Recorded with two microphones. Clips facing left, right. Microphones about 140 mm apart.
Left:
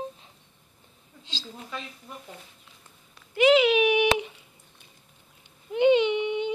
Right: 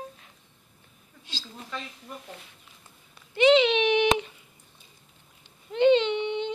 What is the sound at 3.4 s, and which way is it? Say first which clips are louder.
Baby cry: even; 5° left (ahead or behind).